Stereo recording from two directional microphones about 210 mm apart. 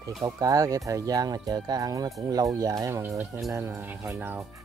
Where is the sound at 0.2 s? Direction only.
15° right (ahead or behind).